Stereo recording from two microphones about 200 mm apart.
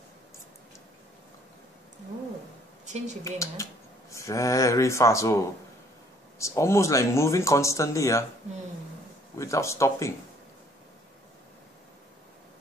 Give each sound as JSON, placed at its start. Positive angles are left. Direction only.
{"t": 2.8, "sound": "a sound", "side_deg": -35}
{"t": 3.3, "sound": "speech", "side_deg": 15}
{"t": 9.4, "sound": "speech", "side_deg": 15}